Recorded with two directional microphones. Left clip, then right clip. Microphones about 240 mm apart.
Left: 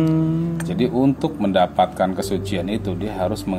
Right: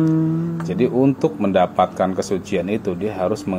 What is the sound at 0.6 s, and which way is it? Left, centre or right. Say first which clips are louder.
Speech: right 2 dB; centre.